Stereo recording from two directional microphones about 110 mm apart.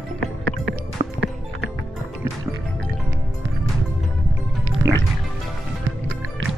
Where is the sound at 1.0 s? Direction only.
65° right (ahead or behind).